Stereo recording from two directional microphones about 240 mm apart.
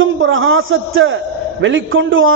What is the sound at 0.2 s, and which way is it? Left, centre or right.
A man's voice, right.